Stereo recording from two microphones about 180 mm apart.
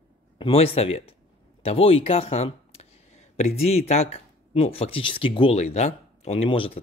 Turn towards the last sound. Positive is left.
turn(degrees=30)  # may be behind; listen again after turning